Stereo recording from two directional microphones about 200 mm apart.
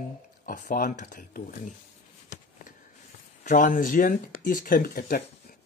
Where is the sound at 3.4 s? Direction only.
40° left (ahead or behind).